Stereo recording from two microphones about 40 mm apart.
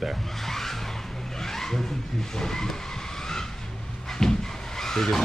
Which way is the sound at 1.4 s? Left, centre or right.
Centre.